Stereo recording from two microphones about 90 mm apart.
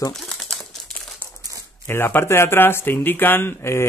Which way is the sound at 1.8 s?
25° left (ahead or behind).